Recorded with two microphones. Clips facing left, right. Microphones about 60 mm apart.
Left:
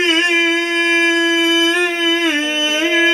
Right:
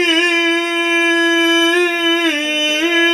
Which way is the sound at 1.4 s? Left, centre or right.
Right.